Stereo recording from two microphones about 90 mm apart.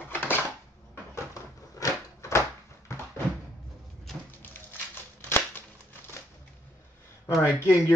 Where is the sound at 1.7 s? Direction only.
35° left (ahead or behind).